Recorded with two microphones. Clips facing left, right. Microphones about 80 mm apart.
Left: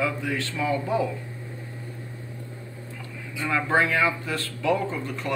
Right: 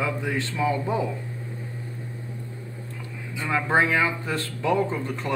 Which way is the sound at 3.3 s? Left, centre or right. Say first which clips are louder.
Right 1 dB; right.